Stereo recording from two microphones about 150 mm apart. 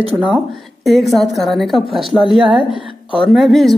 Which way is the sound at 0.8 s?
Centre (ahead or behind).